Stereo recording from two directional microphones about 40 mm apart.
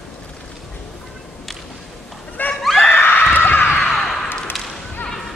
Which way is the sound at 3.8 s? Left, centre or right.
Centre.